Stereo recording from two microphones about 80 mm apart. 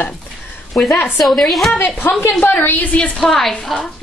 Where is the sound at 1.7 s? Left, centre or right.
Left.